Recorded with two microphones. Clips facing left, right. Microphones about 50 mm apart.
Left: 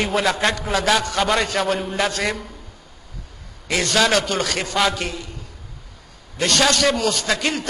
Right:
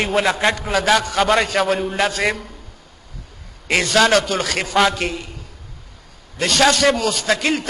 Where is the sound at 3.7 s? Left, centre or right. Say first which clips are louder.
Right 3 dB; centre.